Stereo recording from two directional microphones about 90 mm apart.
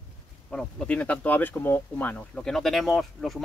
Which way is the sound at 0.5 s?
15° left (ahead or behind).